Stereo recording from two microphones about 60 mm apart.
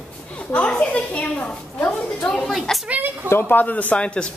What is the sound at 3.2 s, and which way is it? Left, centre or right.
A man's voice, left.